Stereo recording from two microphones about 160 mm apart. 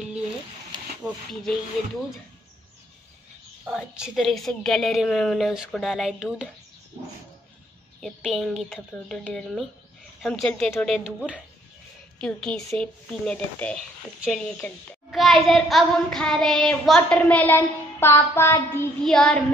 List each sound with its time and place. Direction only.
1.3 s a child's voice: centre (ahead or behind)
3.6 s a child's voice: 5° right (ahead or behind)
8.0 s a child's voice: centre (ahead or behind)
11.1 s a child's voice: 5° right (ahead or behind)
12.2 s a child's voice: 5° left (ahead or behind)
19.0 s a child's voice: 5° left (ahead or behind)